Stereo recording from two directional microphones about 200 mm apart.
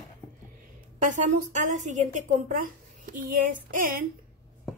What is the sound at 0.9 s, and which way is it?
A woman's voice, 40° right (ahead or behind).